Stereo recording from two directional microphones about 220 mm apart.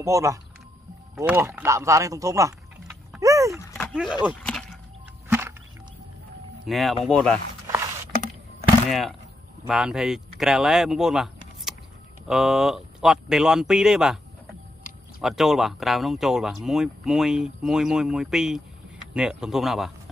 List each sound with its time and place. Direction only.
0.0 s speech: 15° right (ahead or behind)
3.2 s a sound: 15° right (ahead or behind)
3.7 s a sound: centre (ahead or behind)
6.6 s speech: centre (ahead or behind)
8.8 s speech: centre (ahead or behind)
12.3 s speech: centre (ahead or behind)